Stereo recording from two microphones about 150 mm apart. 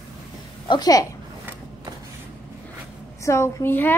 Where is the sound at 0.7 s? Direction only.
25° left (ahead or behind).